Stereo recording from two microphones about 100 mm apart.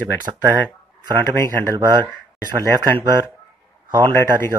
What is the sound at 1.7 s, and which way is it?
Speech, 40° right (ahead or behind).